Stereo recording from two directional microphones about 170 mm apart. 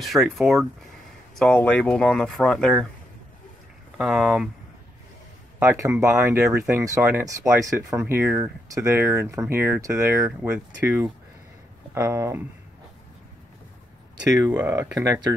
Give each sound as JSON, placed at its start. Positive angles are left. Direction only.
{"t": 0.0, "sound": "speech", "side_deg": 0}
{"t": 4.0, "sound": "speech", "side_deg": -5}
{"t": 5.6, "sound": "speech", "side_deg": -15}
{"t": 14.3, "sound": "speech", "side_deg": -20}